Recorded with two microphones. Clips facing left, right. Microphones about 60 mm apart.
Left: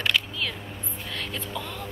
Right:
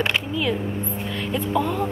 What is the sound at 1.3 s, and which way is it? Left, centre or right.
Speech, centre.